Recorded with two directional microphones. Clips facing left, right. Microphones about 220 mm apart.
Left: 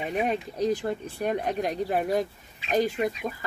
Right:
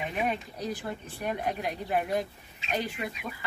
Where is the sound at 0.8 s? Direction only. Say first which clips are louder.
Left 6 dB; 45° left (ahead or behind).